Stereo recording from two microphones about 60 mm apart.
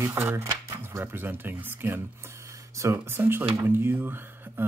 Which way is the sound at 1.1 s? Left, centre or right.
Right.